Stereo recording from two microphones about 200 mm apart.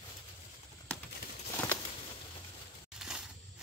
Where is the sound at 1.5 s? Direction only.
10° left (ahead or behind).